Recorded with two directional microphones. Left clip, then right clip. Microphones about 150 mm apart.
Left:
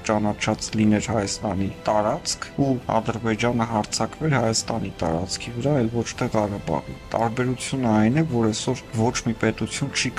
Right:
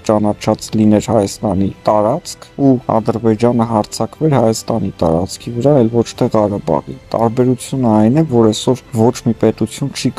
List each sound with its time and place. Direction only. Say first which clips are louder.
0.0 s speech: right 9 dB; 30° right (ahead or behind)